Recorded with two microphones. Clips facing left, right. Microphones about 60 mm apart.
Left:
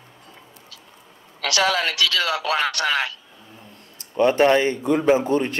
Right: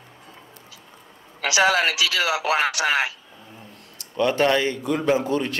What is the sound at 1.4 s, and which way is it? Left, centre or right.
A man's voice, centre.